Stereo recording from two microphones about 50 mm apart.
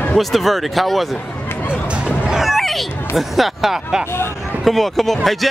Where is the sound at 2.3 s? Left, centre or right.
Centre.